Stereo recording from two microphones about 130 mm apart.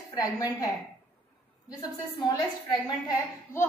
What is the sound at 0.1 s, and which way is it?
Speech, 30° left (ahead or behind).